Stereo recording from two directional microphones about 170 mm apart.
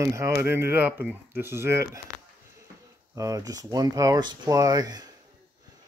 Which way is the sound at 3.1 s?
20° right (ahead or behind).